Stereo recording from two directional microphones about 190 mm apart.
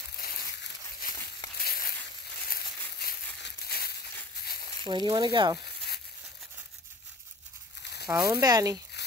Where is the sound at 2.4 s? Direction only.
55° left (ahead or behind).